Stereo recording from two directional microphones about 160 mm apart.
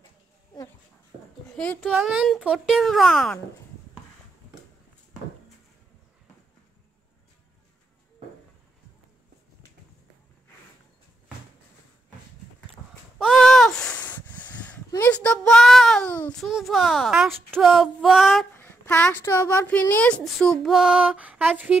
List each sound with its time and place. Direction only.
1.8 s speech: 5° right (ahead or behind)
13.2 s a sound: centre (ahead or behind)
18.5 s speech: 10° left (ahead or behind); by 21.7 s 10° right (ahead or behind)